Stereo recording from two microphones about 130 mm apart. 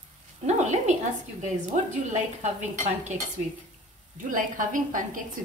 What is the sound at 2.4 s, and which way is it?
Cutlery, 60° right (ahead or behind).